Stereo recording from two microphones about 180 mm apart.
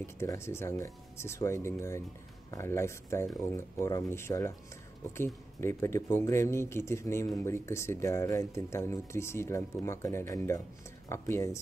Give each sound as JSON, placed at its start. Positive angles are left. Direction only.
{"t": 0.0, "sound": "speech", "side_deg": 15}